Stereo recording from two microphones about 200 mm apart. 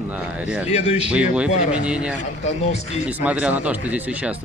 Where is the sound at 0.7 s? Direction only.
35° left (ahead or behind).